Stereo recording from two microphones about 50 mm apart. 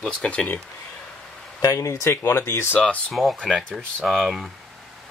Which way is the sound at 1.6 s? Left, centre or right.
Left.